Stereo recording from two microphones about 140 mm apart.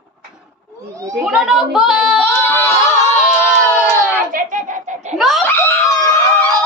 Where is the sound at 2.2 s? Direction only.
15° left (ahead or behind).